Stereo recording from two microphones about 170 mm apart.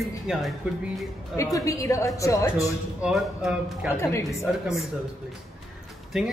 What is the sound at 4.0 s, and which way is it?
Speech, 15° left (ahead or behind).